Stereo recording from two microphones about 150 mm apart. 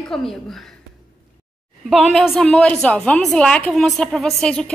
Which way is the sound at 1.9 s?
Centre (ahead or behind).